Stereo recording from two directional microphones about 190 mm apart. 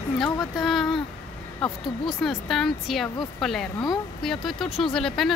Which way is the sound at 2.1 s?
Centre (ahead or behind).